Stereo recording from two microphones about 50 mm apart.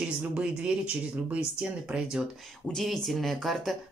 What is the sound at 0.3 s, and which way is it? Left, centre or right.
Speech, centre.